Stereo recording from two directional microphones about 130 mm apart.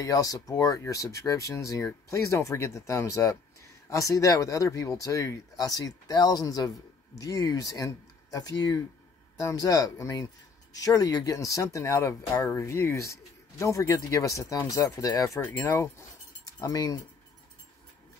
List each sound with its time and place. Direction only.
0.0 s speech: 25° left (ahead or behind)